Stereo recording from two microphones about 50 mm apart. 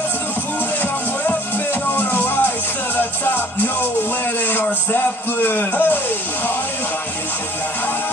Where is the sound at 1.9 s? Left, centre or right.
Left.